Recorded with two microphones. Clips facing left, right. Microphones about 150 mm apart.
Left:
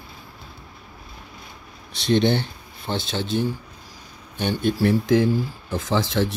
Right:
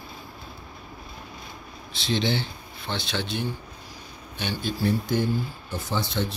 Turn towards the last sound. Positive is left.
turn(degrees=90)